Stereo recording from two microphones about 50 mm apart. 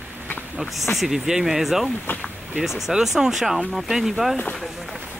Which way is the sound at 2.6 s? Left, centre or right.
Centre.